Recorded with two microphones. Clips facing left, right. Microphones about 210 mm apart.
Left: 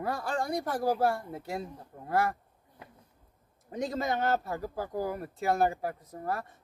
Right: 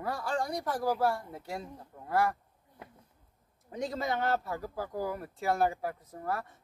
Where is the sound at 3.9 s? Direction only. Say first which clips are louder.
Left 2 dB; 45° left (ahead or behind).